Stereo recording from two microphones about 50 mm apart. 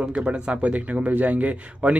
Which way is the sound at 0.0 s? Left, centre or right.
Right.